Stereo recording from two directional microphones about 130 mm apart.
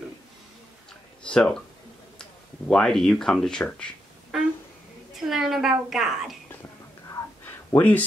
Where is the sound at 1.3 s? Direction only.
5° left (ahead or behind).